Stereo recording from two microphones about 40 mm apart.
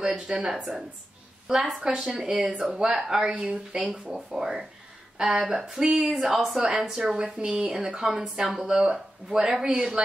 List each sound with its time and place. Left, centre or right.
0.0 s speech: centre
0.5 s speech: centre
1.8 s a woman's voice: right